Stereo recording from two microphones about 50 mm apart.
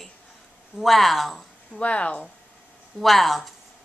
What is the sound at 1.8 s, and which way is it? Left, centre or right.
Speech, left.